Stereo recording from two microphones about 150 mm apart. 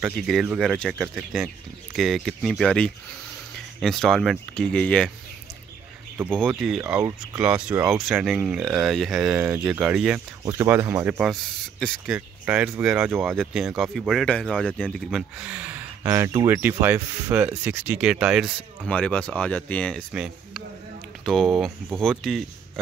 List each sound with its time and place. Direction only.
0.0 s speech: 5° right (ahead or behind)
6.3 s speech: centre (ahead or behind)
10.4 s speech: 20° right (ahead or behind); by 14.5 s 5° left (ahead or behind)
14.5 s speech: 5° right (ahead or behind)
16.0 s speech: 20° right (ahead or behind); by 18.9 s 5° right (ahead or behind)
18.9 s speech: 5° left (ahead or behind)
20.1 s speech: centre (ahead or behind)